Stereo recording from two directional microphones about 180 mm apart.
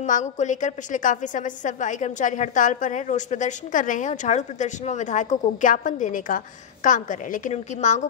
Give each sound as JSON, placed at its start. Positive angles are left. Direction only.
{"t": 0.0, "sound": "a woman's voice", "side_deg": 45}